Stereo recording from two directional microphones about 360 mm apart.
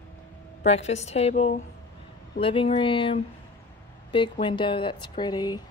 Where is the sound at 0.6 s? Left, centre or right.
Centre.